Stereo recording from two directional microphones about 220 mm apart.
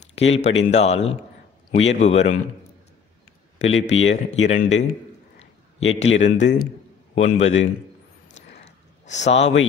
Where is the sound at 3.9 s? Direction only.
65° left (ahead or behind).